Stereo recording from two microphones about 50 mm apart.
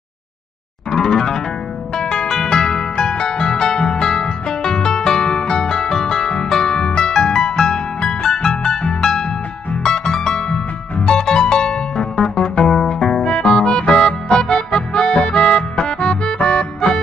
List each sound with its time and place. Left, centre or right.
0.9 s music: centre
9.8 s harp: centre
13.2 s music: centre